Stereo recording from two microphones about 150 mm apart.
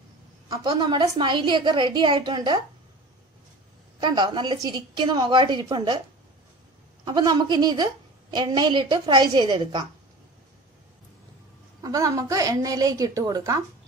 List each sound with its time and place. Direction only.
0.5 s a woman's voice: 30° right (ahead or behind)
4.0 s a woman's voice: 30° right (ahead or behind)
7.1 s a woman's voice: 30° right (ahead or behind)
11.8 s a woman's voice: 20° right (ahead or behind)